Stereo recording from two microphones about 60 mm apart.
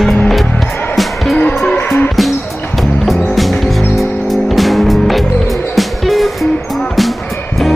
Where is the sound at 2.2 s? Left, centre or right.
Centre.